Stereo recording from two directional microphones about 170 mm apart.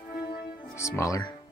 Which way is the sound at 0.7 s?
15° left (ahead or behind).